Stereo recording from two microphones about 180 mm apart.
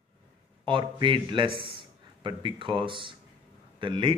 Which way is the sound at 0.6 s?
25° right (ahead or behind).